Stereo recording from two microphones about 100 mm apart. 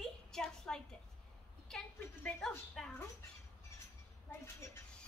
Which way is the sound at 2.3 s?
5° left (ahead or behind).